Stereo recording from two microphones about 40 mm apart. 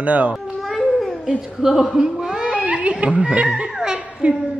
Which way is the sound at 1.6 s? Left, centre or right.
Centre.